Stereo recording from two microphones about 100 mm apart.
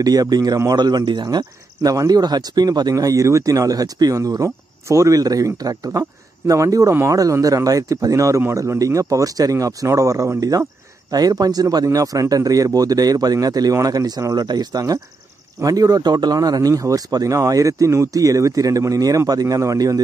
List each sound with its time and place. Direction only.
0.0 s speech: 40° right (ahead or behind)